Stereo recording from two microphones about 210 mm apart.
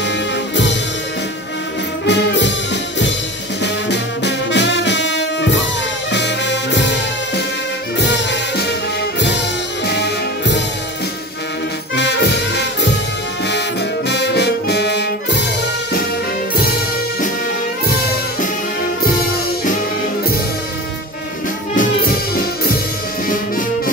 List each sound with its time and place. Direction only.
2.0 s music: 55° left (ahead or behind)
9.8 s music: 55° left (ahead or behind)
11.9 s music: 55° left (ahead or behind)
14.0 s brass instrument: 55° left (ahead or behind)
21.7 s music: 45° left (ahead or behind)